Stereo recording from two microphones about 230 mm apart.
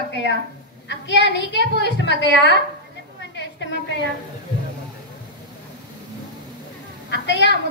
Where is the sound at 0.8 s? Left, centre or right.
Left.